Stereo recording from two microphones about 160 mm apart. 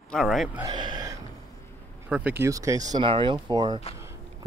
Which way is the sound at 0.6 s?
25° right (ahead or behind).